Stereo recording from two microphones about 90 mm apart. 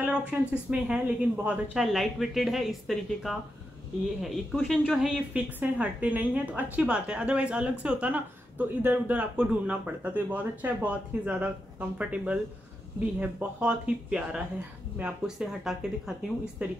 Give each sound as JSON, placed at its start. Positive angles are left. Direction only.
{"t": 0.0, "sound": "a woman's voice", "side_deg": -15}
{"t": 1.8, "sound": "speech", "side_deg": 0}
{"t": 5.6, "sound": "a woman's voice", "side_deg": -20}